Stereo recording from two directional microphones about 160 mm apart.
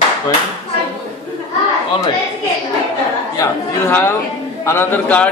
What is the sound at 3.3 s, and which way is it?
A man's voice, 20° left (ahead or behind).